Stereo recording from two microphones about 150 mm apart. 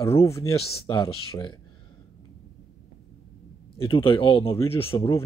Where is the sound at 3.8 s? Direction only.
35° left (ahead or behind).